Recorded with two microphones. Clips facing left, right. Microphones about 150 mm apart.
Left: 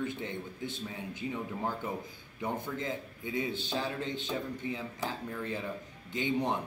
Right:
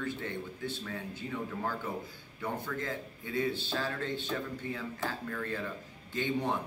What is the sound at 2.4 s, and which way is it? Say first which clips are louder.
A man's voice: left 1 dB; 20° left (ahead or behind).